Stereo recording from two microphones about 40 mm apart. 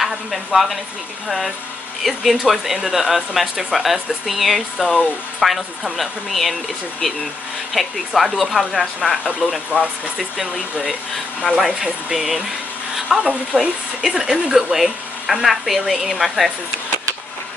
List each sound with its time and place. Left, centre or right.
0.0 s speech: centre
2.0 s speech: centre
7.7 s speech: centre
9.7 s speech: right
10.1 s speech: centre
13.3 s speech: right
14.0 s speech: centre